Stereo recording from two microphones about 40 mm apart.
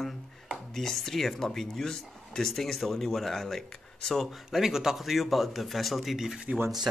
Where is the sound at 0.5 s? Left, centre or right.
Centre.